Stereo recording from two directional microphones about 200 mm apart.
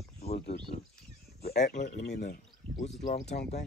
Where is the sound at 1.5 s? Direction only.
50° left (ahead or behind).